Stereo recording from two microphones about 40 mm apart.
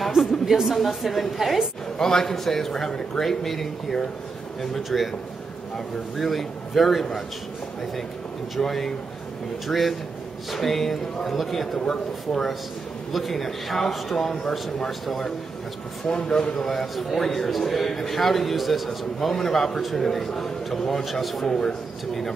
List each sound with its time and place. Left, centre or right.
0.1 s a sound: centre
0.7 s a man's voice: centre
2.0 s a man's voice: centre
6.1 s a man's voice: centre
8.5 s a man's voice: centre
16.1 s speech: left
16.6 s a man's voice: centre
21.5 s a man's voice: centre